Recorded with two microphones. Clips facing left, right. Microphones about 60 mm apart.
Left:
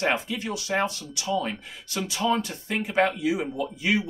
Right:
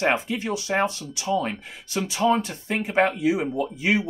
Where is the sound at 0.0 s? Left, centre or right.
Right.